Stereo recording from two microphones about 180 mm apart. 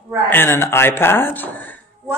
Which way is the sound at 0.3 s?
10° left (ahead or behind).